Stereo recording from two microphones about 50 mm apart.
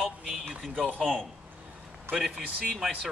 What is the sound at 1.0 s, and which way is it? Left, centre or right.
Speech, centre.